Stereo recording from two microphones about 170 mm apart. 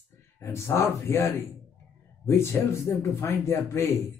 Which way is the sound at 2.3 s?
15° left (ahead or behind).